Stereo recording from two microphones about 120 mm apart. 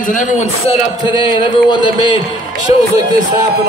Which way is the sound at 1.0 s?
45° left (ahead or behind).